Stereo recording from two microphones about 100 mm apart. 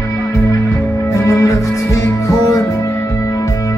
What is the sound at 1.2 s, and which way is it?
Music, 30° left (ahead or behind).